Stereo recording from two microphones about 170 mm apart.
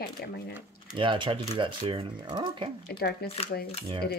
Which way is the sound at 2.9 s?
65° left (ahead or behind).